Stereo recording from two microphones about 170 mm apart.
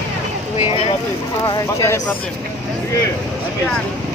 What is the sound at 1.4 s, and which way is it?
Speech, 20° left (ahead or behind).